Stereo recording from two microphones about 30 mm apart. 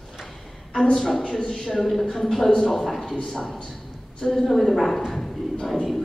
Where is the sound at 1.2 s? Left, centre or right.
Left.